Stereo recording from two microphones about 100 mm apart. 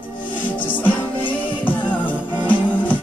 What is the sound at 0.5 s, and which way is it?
Music, 15° left (ahead or behind).